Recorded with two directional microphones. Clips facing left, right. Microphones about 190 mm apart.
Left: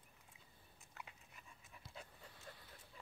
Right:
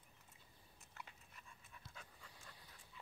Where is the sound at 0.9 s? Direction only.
5° left (ahead or behind).